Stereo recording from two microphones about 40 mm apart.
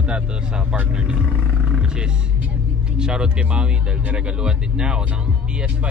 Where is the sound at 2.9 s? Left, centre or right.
Centre.